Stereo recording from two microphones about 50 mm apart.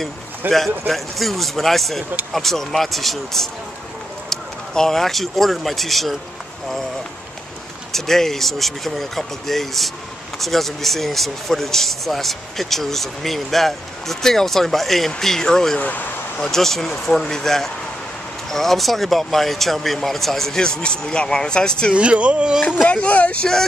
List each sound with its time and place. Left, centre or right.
0.5 s speech: centre
7.9 s speech: centre
15.8 s speech: left
16.4 s speech: centre
21.9 s speech: right
22.8 s speech: left